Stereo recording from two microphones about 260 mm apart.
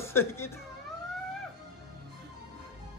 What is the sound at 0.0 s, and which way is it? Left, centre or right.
Speech, centre.